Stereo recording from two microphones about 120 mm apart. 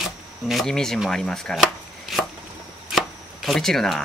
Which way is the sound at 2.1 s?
Centre (ahead or behind).